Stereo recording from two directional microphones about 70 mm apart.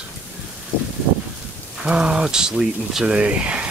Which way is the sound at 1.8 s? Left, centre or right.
Centre.